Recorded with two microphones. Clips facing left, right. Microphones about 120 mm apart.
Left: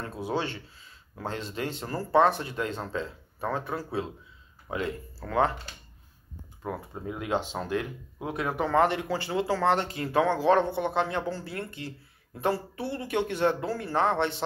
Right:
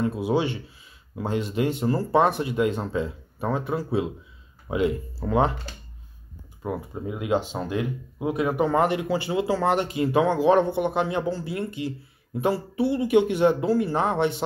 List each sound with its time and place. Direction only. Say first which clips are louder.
0.0 s speech: right 7 dB; 15° right (ahead or behind)
6.6 s speech: right 5 dB; 10° right (ahead or behind)